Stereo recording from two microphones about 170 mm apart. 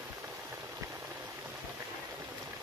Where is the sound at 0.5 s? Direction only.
15° right (ahead or behind).